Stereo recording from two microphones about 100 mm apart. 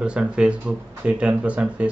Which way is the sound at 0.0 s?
10° right (ahead or behind).